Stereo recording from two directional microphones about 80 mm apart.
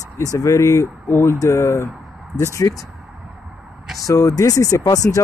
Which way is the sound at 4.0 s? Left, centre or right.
Left.